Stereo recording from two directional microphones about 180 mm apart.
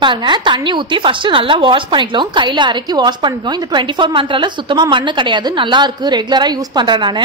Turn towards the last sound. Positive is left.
turn(degrees=-25)  # may be behind; listen again after turning